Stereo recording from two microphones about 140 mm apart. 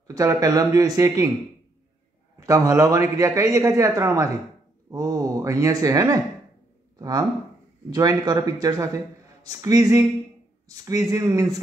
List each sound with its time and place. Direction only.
0.0 s a man's voice: 25° right (ahead or behind)
2.4 s a man's voice: 25° right (ahead or behind)